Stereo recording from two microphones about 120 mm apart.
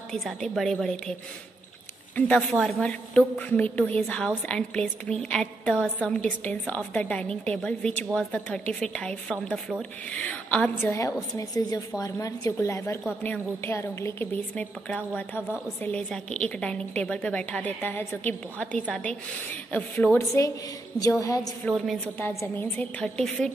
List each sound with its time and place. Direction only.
0.1 s a woman's voice: centre (ahead or behind)
2.1 s a woman's voice: 15° left (ahead or behind)
10.8 s a woman's voice: 20° left (ahead or behind)
21.0 s a woman's voice: 30° left (ahead or behind)
21.6 s a woman's voice: centre (ahead or behind)
22.4 s a woman's voice: 15° left (ahead or behind)